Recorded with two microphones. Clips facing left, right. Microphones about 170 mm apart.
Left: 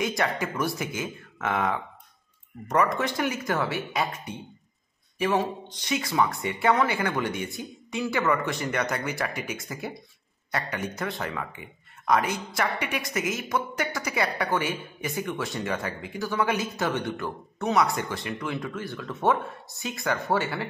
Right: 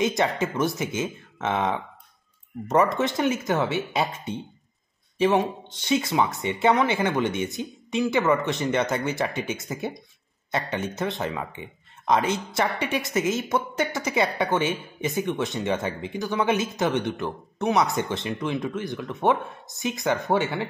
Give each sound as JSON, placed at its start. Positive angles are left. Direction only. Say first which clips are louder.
{"t": 0.0, "sound": "speech", "louder": "right 4 dB", "side_deg": -25}